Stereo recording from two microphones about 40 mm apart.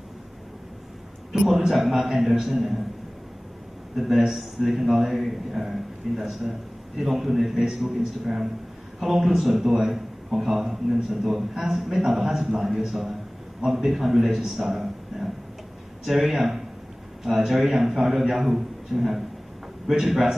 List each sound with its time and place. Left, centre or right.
1.3 s a man's voice: centre
3.9 s a man's voice: centre